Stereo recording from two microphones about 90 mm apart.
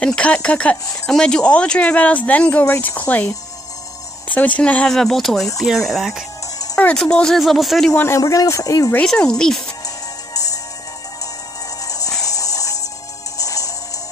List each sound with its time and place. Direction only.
0.0 s speech: 10° left (ahead or behind)
2.6 s speech: 25° left (ahead or behind)
4.3 s speech: 15° left (ahead or behind)
4.9 s speech: 5° left (ahead or behind)
6.8 s speech: 10° left (ahead or behind)
7.9 s speech: 20° left (ahead or behind)
8.2 s speech: 40° left (ahead or behind)
9.0 s speech: 5° left (ahead or behind)
9.8 s music: 40° left (ahead or behind)
11.8 s music: 40° left (ahead or behind)